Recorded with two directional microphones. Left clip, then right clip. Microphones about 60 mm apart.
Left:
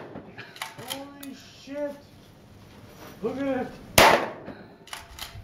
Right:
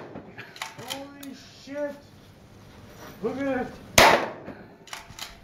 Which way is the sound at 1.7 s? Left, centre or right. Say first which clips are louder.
Right 1 dB; left.